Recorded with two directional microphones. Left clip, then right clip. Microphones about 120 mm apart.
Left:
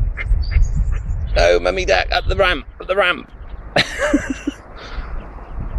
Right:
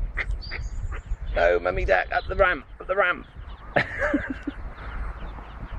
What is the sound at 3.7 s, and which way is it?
Cough, 40° left (ahead or behind).